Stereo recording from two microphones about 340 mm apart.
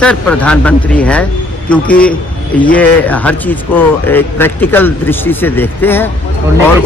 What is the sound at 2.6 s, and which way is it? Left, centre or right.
A man's voice, centre.